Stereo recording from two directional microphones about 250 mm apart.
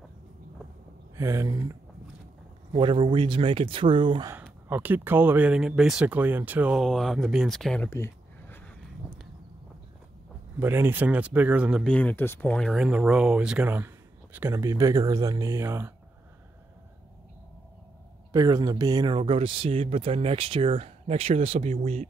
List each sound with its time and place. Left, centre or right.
1.1 s speech: centre
10.6 s speech: centre
18.3 s speech: centre